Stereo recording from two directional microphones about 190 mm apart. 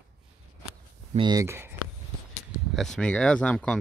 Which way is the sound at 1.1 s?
25° right (ahead or behind).